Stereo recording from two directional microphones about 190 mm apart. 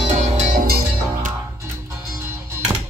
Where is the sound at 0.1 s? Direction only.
40° right (ahead or behind).